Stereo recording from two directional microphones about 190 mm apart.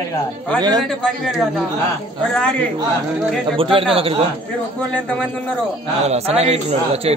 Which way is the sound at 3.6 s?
30° right (ahead or behind).